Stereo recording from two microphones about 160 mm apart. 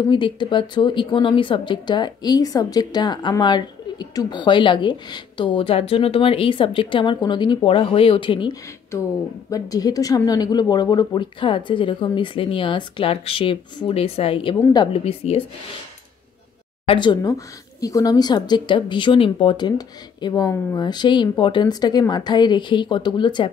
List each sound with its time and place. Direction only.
0.1 s a woman's voice: 30° left (ahead or behind)
16.8 s speech: 30° left (ahead or behind)